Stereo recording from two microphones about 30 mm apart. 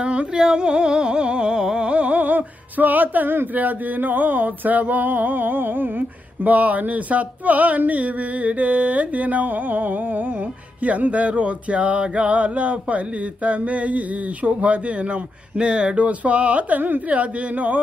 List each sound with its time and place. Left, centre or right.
0.0 s humming: right
0.3 s a sound: right
1.9 s music: right
2.1 s music: right
10.8 s music: right
15.5 s music: right
17.1 s music: right